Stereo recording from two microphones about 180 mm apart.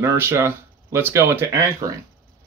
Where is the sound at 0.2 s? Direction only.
15° right (ahead or behind).